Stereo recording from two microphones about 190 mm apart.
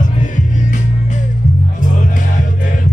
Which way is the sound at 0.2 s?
40° left (ahead or behind).